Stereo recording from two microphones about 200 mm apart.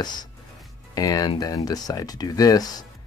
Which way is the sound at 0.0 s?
20° left (ahead or behind).